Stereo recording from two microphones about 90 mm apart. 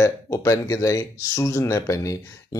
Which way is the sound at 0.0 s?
35° left (ahead or behind).